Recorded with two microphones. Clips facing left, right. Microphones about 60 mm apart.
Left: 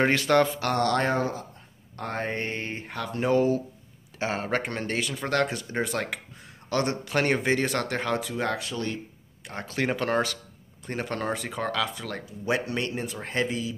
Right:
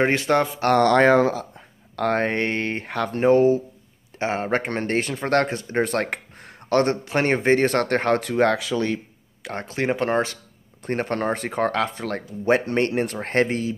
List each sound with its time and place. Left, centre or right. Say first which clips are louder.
0.0 s speech: right 2 dB; right
0.7 s speech: right 9 dB; right
2.0 s mantra: right 9 dB; right
3.1 s speech: right 6 dB; right
5.9 s a man's voice: right 6 dB; right
7.1 s speech: right 5 dB; right
9.6 s speech: right 4 dB; right
10.9 s speech: right 6 dB; right
12.9 s speech: right 8 dB; right